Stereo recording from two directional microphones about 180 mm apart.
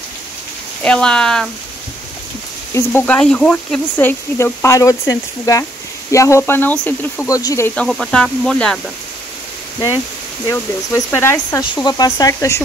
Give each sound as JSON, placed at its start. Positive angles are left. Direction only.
{"t": 0.8, "sound": "speech", "side_deg": 5}
{"t": 2.7, "sound": "speech", "side_deg": 10}
{"t": 10.5, "sound": "speech", "side_deg": 15}